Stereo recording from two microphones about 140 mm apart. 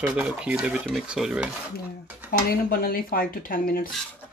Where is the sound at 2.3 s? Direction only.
90° left.